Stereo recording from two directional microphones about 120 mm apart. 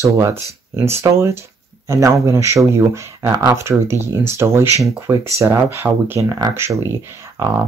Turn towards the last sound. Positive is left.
turn(degrees=-20)  # may be behind; listen again after turning